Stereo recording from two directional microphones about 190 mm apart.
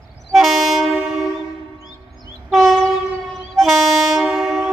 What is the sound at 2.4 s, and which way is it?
Train, centre (ahead or behind).